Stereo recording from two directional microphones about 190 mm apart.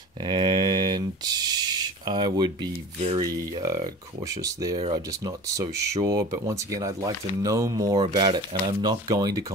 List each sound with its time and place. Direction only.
0.2 s speech: 25° right (ahead or behind)
3.3 s speech: 20° right (ahead or behind)
4.7 s speech: 30° right (ahead or behind)